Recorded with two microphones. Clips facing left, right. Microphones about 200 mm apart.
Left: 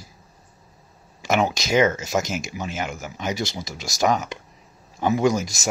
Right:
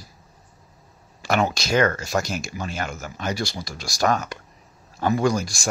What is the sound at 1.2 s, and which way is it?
Speech, 20° left (ahead or behind).